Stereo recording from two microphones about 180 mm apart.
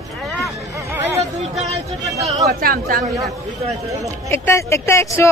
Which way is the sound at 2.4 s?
55° right (ahead or behind).